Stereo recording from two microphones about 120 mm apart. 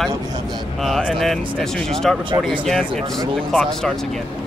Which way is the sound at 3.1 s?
5° left (ahead or behind).